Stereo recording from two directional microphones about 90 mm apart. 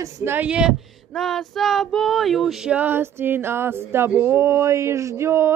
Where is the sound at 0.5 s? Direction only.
10° right (ahead or behind).